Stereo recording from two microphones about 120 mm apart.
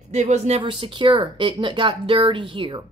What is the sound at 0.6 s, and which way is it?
Speech, 45° right (ahead or behind).